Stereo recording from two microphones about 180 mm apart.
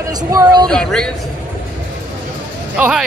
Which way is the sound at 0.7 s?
5° left (ahead or behind).